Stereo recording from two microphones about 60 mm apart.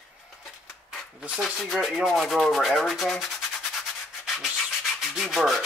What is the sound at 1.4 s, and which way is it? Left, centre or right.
Rub, centre.